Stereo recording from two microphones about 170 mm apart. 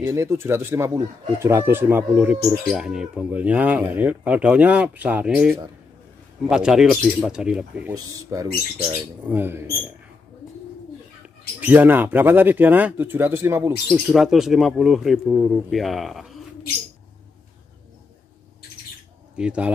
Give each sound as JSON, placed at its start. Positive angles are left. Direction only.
{"t": 0.0, "sound": "speech", "side_deg": -15}
{"t": 7.9, "sound": "speech", "side_deg": -20}
{"t": 11.6, "sound": "speech", "side_deg": -10}
{"t": 13.8, "sound": "speech", "side_deg": 0}
{"t": 19.3, "sound": "speech", "side_deg": -5}